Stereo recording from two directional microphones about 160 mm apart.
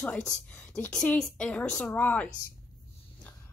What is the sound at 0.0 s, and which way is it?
A woman's voice, 10° left (ahead or behind).